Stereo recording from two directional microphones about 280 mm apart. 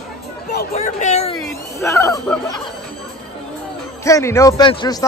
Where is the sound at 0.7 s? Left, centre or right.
Left.